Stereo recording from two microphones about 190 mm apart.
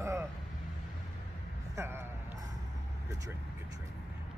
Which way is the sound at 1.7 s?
10° right (ahead or behind).